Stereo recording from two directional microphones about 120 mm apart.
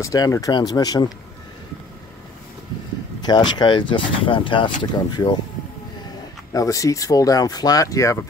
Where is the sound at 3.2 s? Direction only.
35° left (ahead or behind).